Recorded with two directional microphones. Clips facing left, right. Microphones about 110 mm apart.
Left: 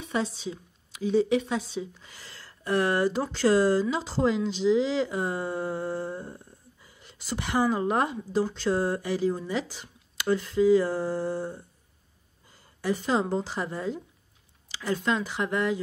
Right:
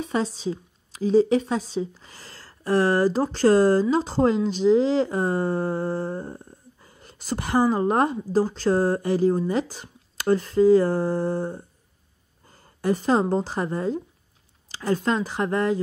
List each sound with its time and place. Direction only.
0.0 s a woman's voice: 40° right (ahead or behind)